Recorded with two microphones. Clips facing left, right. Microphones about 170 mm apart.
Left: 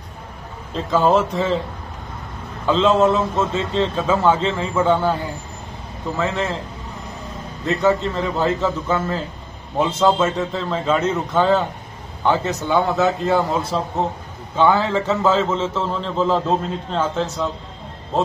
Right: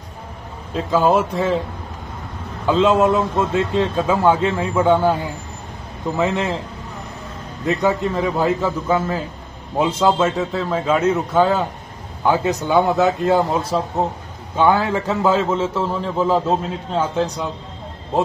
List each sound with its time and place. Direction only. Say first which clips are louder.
0.7 s a man's voice: even; 10° right (ahead or behind)
2.6 s a man's voice: right 1 dB; 10° right (ahead or behind)
6.1 s a man's voice: right 2 dB; 15° right (ahead or behind)
7.6 s a man's voice: even; 10° right (ahead or behind)